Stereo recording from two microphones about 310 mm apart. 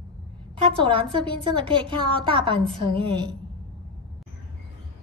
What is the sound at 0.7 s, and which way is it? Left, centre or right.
A woman's voice, centre.